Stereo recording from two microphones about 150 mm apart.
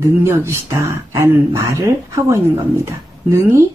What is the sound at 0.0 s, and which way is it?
Speech, 15° right (ahead or behind).